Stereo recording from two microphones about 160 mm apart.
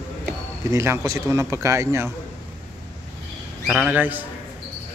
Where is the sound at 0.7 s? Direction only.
20° right (ahead or behind).